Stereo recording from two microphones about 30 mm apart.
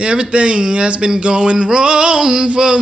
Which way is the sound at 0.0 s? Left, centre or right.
Right.